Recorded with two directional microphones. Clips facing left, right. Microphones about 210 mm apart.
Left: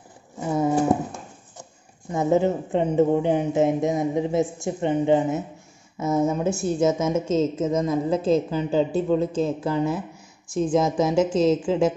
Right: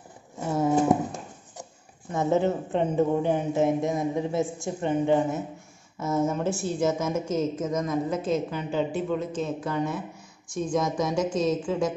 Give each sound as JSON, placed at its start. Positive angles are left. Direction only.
{"t": 2.1, "sound": "a woman's voice", "side_deg": 15}